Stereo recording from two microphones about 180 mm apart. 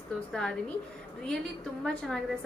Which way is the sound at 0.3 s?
5° left (ahead or behind).